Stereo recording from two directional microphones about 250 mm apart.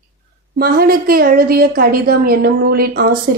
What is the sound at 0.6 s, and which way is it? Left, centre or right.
A woman's voice, right.